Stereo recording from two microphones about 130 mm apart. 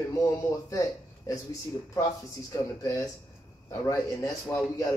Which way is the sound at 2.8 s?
25° left (ahead or behind).